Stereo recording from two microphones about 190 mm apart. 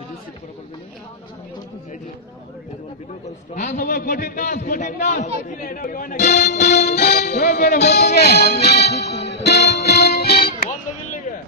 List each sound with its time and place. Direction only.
3.5 s speech: 40° left (ahead or behind)
3.8 s a man's voice: 50° left (ahead or behind)
7.0 s music: 55° left (ahead or behind)